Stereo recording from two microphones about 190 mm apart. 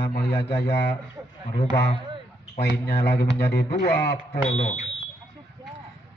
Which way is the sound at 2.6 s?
60° left (ahead or behind).